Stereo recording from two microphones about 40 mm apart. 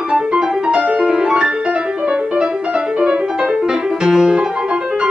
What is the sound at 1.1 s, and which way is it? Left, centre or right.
Music, right.